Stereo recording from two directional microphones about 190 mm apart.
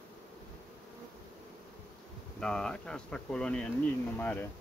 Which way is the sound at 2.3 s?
5° left (ahead or behind).